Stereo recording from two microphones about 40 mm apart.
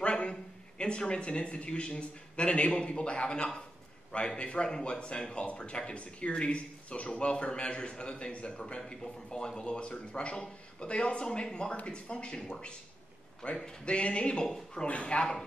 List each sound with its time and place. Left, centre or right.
0.0 s a man's voice: left
13.4 s speech: left